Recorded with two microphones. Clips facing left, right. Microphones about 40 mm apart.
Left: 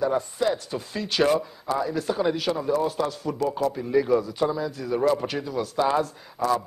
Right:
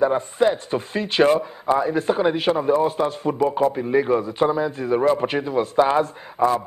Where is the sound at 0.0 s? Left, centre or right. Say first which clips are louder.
Right 5 dB; right.